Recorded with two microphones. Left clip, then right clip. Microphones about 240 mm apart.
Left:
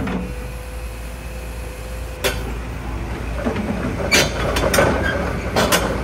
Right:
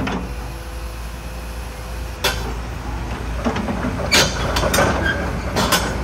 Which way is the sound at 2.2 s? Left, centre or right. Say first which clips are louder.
Right 1 dB; centre.